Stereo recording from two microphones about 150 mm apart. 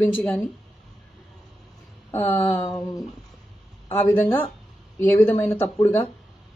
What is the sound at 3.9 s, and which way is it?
Speech, 15° left (ahead or behind).